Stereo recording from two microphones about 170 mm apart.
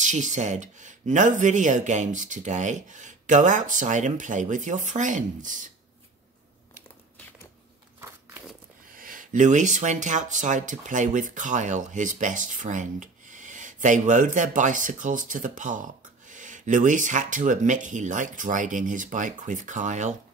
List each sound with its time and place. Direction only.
0.0 s speech: 45° right (ahead or behind)
8.9 s speech: 55° right (ahead or behind)